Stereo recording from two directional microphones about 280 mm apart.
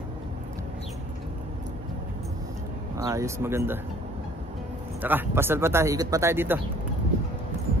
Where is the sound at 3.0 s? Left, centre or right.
Centre.